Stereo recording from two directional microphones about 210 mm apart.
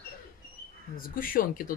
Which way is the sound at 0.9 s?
40° left (ahead or behind).